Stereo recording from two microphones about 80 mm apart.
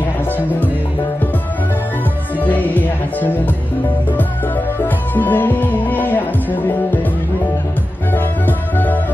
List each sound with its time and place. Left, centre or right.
2.4 s music: left
4.8 s music: left
8.5 s music: left